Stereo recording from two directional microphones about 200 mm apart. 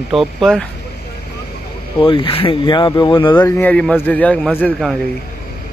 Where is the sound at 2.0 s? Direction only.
25° left (ahead or behind).